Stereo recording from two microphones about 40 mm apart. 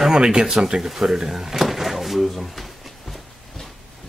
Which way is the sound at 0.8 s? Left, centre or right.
Centre.